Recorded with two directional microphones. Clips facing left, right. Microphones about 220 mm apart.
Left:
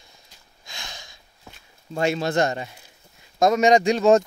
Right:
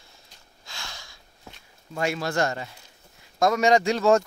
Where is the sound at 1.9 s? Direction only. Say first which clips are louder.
Left 4 dB; 25° left (ahead or behind).